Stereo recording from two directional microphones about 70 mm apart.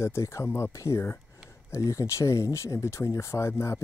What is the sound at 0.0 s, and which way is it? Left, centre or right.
Speech, left.